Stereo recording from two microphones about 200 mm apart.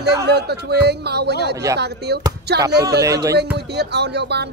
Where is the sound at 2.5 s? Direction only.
55° right (ahead or behind).